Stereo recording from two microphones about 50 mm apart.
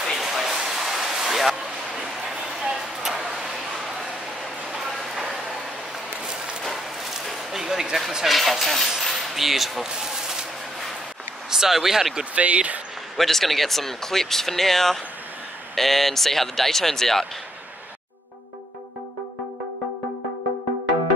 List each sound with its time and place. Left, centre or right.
0.0 s a sound: centre
2.6 s vehicle: centre
6.6 s a sound: centre
8.1 s speech: centre
8.4 s speech: centre
9.0 s a sound: centre
11.5 s speech: centre
12.4 s speech: right
13.2 s speech: centre